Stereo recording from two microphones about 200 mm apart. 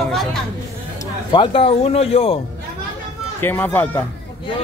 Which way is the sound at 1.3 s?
25° left (ahead or behind).